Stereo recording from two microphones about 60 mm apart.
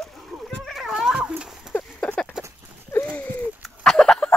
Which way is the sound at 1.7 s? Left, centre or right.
Centre.